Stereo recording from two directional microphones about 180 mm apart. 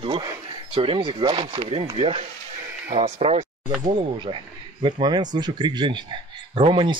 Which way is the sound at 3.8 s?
25° right (ahead or behind).